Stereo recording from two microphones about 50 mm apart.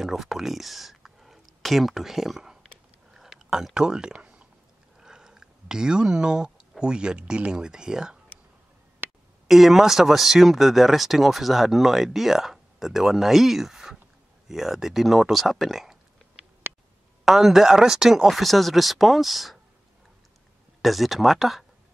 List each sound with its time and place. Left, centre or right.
0.0 s speech: centre
3.1 s a sound: centre
6.8 s speech: centre
9.5 s speech: centre
17.2 s speech: centre
18.2 s speech: centre
20.8 s speech: centre